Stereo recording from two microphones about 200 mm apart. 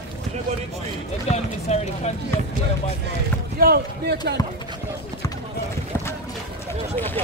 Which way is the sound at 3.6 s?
55° right (ahead or behind).